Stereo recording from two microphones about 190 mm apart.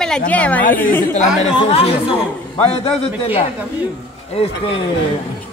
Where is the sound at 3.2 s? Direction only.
30° left (ahead or behind).